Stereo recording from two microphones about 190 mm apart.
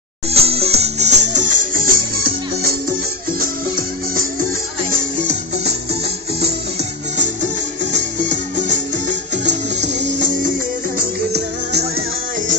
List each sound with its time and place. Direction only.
0.3 s music: 30° right (ahead or behind)
3.3 s music: 50° right (ahead or behind)
9.4 s music: 40° right (ahead or behind)
11.0 s music: 55° right (ahead or behind)